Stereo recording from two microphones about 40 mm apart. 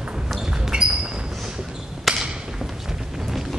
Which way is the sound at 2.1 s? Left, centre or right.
Centre.